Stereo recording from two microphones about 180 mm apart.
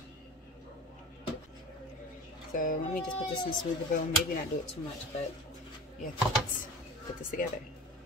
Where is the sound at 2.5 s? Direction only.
50° left (ahead or behind).